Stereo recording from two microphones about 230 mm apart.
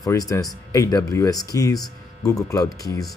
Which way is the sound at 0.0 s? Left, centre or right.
Centre.